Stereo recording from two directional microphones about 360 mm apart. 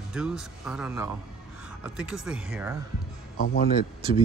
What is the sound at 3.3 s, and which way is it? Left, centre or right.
Speech, left.